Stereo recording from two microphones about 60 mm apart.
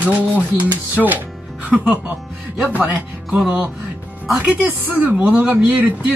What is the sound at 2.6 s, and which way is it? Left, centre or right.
Speech, right.